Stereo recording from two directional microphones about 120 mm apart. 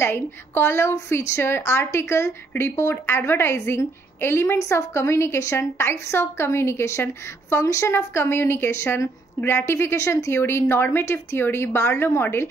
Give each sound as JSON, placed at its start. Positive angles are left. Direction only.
{"t": 0.0, "sound": "speech", "side_deg": 20}